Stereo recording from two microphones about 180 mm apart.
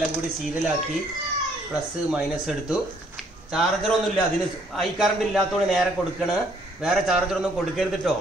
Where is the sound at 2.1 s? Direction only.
5° right (ahead or behind).